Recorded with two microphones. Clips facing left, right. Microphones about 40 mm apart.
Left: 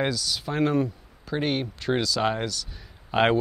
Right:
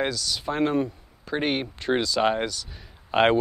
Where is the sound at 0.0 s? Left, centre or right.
Centre.